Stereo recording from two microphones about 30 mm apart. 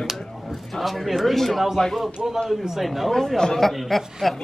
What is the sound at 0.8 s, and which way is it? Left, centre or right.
Speech, centre.